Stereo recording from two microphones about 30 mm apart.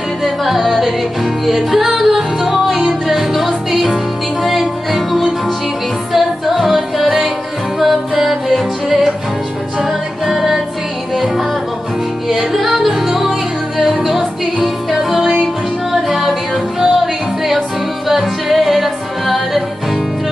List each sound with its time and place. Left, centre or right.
0.2 s music: centre
8.2 s music: centre
8.5 s music: centre
12.5 s music: centre
16.1 s music: centre
16.8 s music: centre